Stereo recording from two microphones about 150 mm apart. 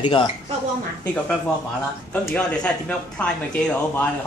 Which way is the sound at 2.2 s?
5° left (ahead or behind).